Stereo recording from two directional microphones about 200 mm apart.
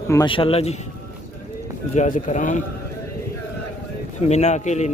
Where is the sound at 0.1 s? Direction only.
25° left (ahead or behind).